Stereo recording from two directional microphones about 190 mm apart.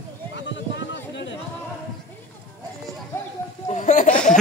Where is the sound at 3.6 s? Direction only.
40° left (ahead or behind).